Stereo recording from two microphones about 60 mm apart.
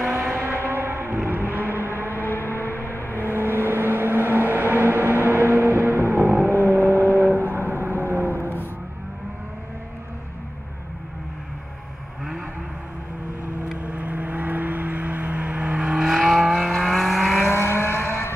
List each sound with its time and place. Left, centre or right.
0.7 s music: right
2.2 s a sound: left
3.3 s vehicle: right
8.4 s music: left
13.7 s vehicle: right; by 17.5 s centre
17.5 s vehicle: left